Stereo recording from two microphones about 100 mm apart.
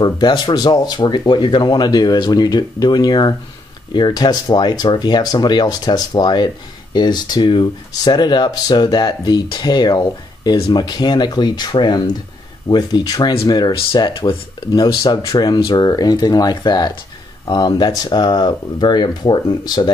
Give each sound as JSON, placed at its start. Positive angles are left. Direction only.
{"t": 0.0, "sound": "speech", "side_deg": 45}